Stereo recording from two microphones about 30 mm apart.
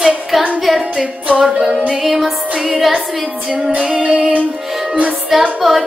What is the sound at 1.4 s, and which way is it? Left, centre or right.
Child singing, centre.